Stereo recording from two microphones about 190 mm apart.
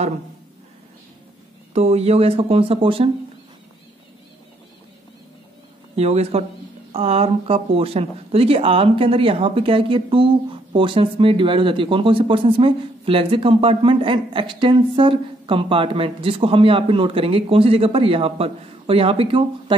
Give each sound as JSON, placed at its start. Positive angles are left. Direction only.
{"t": 1.7, "sound": "speech", "side_deg": -35}
{"t": 5.9, "sound": "speech", "side_deg": -35}